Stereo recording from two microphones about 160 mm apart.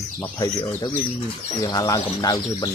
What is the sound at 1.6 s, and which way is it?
Speech, 25° left (ahead or behind).